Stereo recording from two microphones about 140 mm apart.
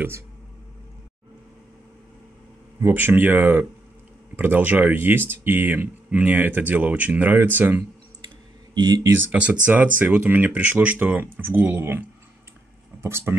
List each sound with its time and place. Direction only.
2.8 s speech: 15° right (ahead or behind)
8.7 s speech: 30° right (ahead or behind)
9.3 s speech: 10° right (ahead or behind)